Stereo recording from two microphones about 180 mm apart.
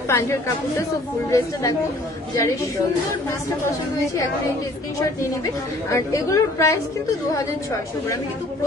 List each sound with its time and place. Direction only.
0.1 s a woman's voice: 15° left (ahead or behind)
5.9 s a woman's voice: 15° left (ahead or behind)